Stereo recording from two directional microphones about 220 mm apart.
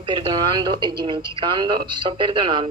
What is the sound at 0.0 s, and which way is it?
Speech, 20° right (ahead or behind).